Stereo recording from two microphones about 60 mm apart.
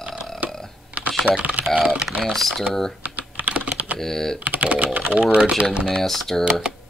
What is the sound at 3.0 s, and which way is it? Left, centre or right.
Typing, right.